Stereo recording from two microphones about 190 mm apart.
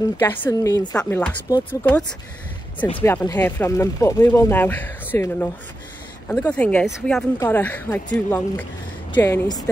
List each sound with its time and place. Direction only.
0.2 s speech: 15° left (ahead or behind)
0.9 s speech: 5° left (ahead or behind)